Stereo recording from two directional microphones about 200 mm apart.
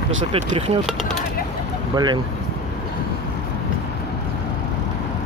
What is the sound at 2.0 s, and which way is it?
Speech, 20° right (ahead or behind).